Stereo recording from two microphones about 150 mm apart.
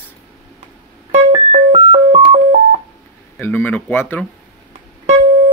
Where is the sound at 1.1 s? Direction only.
45° right (ahead or behind).